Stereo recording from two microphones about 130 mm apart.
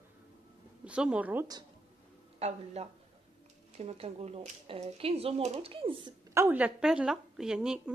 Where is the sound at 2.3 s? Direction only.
55° right (ahead or behind).